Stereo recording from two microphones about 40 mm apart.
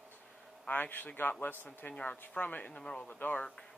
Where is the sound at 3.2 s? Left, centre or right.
Left.